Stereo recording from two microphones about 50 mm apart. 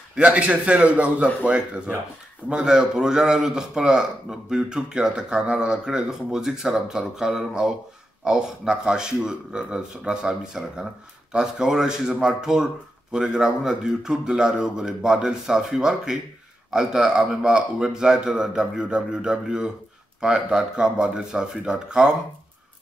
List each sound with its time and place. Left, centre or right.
0.1 s a man's voice: right
2.5 s a man's voice: centre